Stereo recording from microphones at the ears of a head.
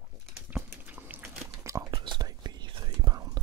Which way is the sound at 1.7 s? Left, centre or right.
Right.